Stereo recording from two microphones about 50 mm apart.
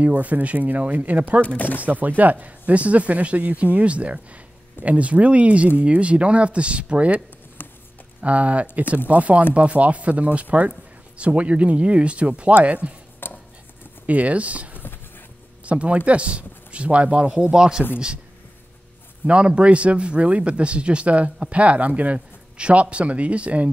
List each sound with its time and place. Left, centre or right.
0.0 s speech: right
7.6 s clip-clop: left
8.2 s speech: right
13.2 s cutlery: left
14.0 s speech: right
19.2 s speech: right